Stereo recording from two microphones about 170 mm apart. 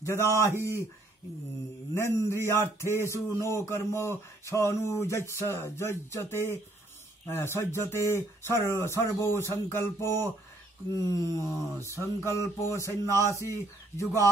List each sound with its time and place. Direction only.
0.0 s a man's voice: 15° left (ahead or behind)
2.0 s speech: 15° left (ahead or behind)
11.3 s speech: 15° left (ahead or behind)